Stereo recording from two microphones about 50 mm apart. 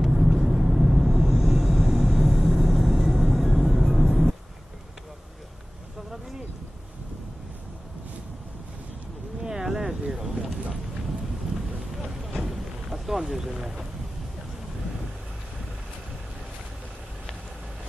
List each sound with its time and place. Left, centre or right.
0.0 s vehicle: centre
9.4 s boat: centre
12.0 s boat: centre
13.6 s a sound: centre